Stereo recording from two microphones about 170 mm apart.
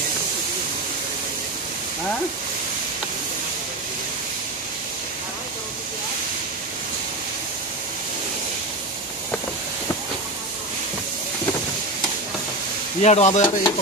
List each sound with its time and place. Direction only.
13.0 s sizzle: 40° left (ahead or behind)